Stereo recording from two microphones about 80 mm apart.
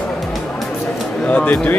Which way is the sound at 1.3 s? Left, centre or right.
Centre.